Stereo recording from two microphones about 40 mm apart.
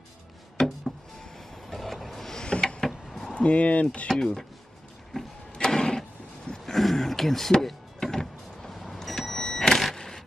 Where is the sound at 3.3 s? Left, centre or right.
Left.